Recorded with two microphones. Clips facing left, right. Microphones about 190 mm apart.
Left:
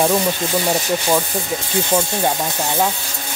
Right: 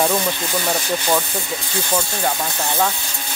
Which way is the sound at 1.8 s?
20° left (ahead or behind).